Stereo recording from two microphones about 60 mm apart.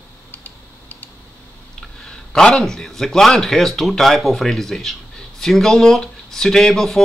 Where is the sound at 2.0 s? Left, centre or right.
Centre.